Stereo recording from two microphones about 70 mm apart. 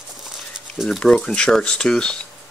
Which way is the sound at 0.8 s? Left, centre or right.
Centre.